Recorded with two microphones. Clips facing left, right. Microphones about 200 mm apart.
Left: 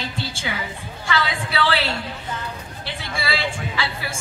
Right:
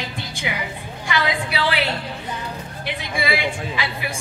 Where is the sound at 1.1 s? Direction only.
15° right (ahead or behind).